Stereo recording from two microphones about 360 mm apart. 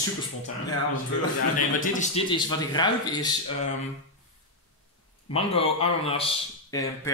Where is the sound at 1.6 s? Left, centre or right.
Left.